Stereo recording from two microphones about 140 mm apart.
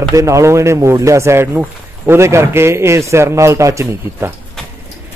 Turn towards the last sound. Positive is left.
turn(degrees=-20)  # may be behind; listen again after turning